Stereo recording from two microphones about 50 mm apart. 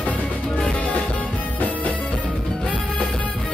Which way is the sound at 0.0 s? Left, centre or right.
Left.